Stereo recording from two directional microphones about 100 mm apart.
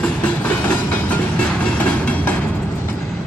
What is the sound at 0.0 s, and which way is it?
Train, 15° left (ahead or behind).